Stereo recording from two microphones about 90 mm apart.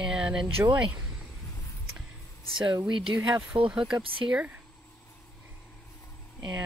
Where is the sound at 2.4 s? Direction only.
70° right (ahead or behind).